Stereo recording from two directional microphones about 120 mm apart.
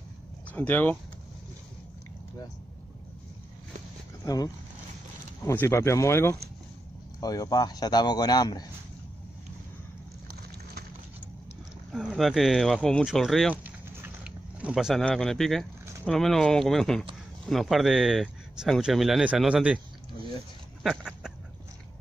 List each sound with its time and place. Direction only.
0.5 s speech: 15° left (ahead or behind)
4.2 s speech: 30° left (ahead or behind)
7.2 s speech: 30° left (ahead or behind)
11.9 s speech: 5° right (ahead or behind)
13.7 s a sound: 10° right (ahead or behind)
15.0 s speech: 5° left (ahead or behind)
20.8 s a sound: centre (ahead or behind)